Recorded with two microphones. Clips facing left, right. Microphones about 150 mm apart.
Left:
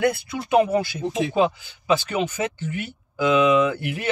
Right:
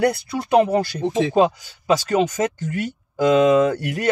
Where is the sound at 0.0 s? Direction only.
35° right (ahead or behind).